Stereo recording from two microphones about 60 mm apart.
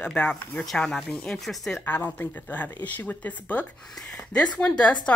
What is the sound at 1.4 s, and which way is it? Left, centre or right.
Speech, centre.